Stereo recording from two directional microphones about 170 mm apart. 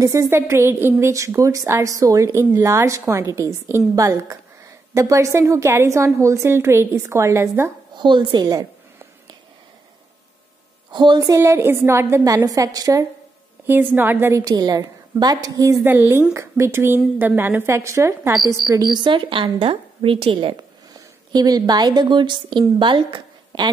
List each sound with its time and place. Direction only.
0.0 s a woman's voice: 20° right (ahead or behind)
7.9 s a woman's voice: 25° right (ahead or behind)
10.9 s a woman's voice: 25° right (ahead or behind)